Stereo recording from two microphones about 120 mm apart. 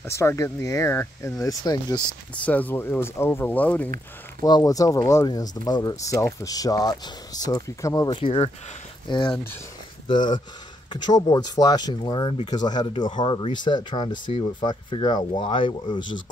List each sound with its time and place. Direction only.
0.0 s speech: 20° left (ahead or behind)
2.4 s speech: 15° left (ahead or behind)
4.4 s speech: 30° left (ahead or behind)
8.1 s speech: 45° left (ahead or behind)